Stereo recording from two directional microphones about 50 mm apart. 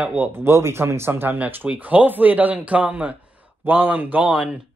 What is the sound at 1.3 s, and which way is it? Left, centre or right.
Speech, right.